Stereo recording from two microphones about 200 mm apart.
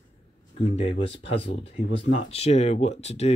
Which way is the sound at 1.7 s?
30° left (ahead or behind).